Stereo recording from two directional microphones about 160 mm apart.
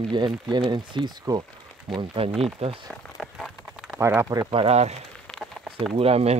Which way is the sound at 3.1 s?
Centre (ahead or behind).